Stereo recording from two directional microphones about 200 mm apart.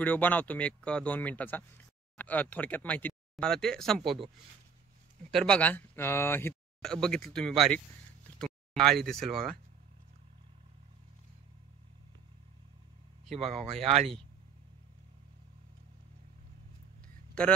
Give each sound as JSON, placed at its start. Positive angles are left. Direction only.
{"t": 0.0, "sound": "speech", "side_deg": 10}
{"t": 5.3, "sound": "speech", "side_deg": 5}
{"t": 8.4, "sound": "a sound", "side_deg": 0}
{"t": 9.0, "sound": "speech", "side_deg": 0}
{"t": 13.7, "sound": "speech", "side_deg": -30}